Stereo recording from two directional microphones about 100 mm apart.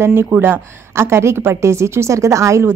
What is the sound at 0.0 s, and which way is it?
A woman's voice, 25° right (ahead or behind).